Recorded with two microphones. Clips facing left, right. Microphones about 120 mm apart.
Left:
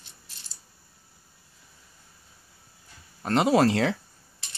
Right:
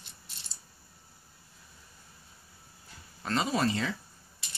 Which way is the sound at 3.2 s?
60° left (ahead or behind).